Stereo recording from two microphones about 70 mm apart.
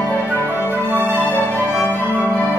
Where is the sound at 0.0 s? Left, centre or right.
Left.